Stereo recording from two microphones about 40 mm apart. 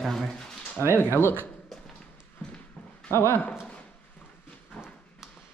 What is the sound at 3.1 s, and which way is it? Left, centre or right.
Speech, left.